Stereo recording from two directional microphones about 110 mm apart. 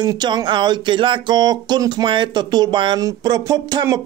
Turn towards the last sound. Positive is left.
turn(degrees=-40)  # may be behind; listen again after turning